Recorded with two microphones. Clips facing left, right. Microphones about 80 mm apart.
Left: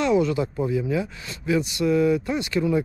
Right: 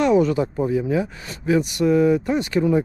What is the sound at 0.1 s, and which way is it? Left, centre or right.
Speech, right.